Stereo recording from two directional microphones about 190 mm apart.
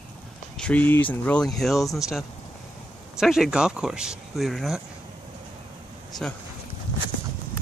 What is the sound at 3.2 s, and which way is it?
Speech, centre (ahead or behind).